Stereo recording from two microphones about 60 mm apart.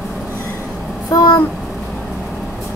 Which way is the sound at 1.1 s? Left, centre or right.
Left.